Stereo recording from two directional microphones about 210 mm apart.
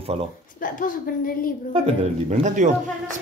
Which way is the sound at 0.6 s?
40° left (ahead or behind).